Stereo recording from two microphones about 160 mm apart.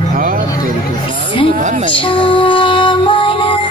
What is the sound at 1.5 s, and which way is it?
Music, 50° right (ahead or behind).